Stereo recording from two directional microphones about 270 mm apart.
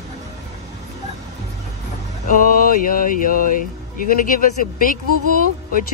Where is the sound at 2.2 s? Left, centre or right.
Left.